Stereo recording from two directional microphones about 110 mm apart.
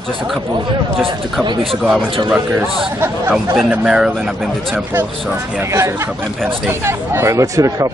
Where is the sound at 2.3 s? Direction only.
10° right (ahead or behind).